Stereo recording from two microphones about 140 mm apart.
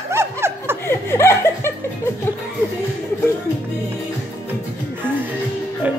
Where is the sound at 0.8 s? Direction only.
20° left (ahead or behind).